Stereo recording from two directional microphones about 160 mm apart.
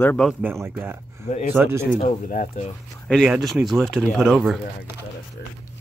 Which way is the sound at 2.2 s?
50° left (ahead or behind).